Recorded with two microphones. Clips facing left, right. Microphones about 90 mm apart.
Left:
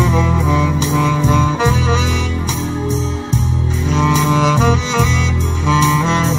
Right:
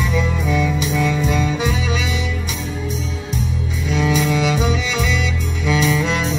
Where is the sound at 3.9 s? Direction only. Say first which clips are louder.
Left 3 dB; 30° left (ahead or behind).